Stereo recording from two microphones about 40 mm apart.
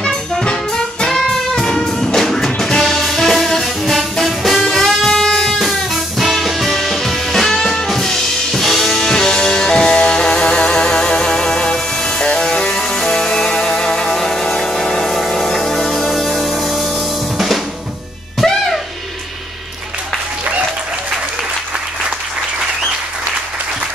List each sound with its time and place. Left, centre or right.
0.0 s music: centre
0.5 s brass instrument: centre
1.5 s music: centre
14.1 s a sound: centre
14.4 s music: centre
18.4 s music: centre